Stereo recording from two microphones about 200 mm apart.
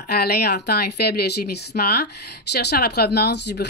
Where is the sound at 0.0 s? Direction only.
50° left (ahead or behind).